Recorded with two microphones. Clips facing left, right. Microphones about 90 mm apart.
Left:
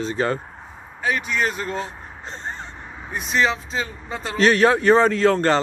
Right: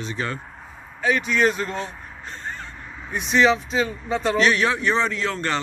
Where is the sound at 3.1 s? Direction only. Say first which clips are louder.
Right 3 dB; centre (ahead or behind).